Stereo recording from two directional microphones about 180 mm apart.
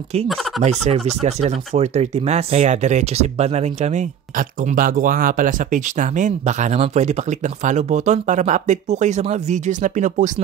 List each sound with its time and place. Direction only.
0.3 s fowl: centre (ahead or behind)
0.6 s speech: 35° right (ahead or behind)